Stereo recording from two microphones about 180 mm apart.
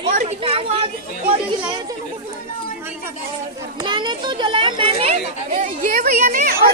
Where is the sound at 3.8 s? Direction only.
25° right (ahead or behind); by 6.5 s 45° right (ahead or behind).